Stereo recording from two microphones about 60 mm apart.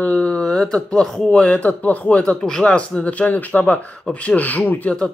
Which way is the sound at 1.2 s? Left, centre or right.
Centre.